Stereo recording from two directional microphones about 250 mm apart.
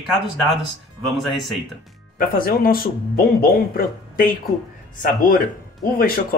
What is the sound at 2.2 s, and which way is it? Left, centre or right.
Speech, left.